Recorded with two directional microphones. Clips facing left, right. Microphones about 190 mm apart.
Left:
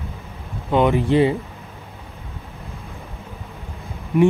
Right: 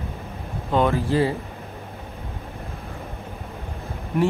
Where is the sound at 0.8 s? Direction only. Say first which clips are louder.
Left 4 dB; 20° left (ahead or behind).